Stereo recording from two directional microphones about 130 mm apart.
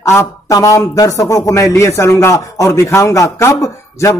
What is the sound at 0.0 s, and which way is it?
Speech, 20° left (ahead or behind).